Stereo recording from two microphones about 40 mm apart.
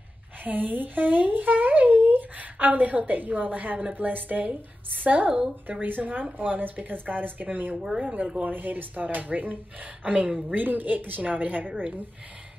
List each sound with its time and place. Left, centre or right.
0.4 s a woman's voice: right